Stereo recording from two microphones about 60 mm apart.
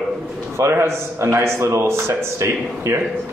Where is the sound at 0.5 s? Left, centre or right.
Right.